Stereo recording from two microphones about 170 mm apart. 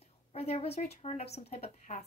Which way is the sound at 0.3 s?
35° left (ahead or behind).